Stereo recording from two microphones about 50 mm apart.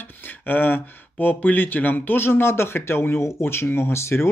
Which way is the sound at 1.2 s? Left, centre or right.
Left.